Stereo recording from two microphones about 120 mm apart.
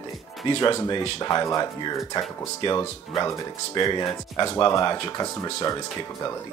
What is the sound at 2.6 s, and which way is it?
Speech, 50° left (ahead or behind).